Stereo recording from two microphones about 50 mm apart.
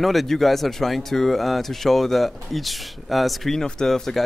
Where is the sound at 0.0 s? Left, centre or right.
Centre.